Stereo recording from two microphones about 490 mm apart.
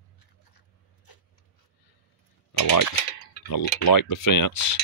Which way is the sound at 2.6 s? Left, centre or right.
Left.